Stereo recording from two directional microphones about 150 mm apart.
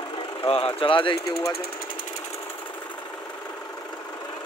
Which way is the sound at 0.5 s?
40° left (ahead or behind).